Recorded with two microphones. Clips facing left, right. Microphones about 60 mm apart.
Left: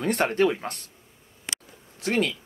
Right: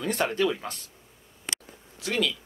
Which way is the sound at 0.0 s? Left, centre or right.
Left.